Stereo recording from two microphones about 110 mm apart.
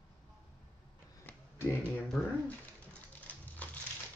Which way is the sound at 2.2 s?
5° left (ahead or behind).